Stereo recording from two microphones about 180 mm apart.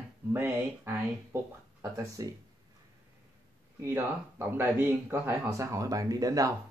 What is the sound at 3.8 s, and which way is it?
Speech, 15° right (ahead or behind).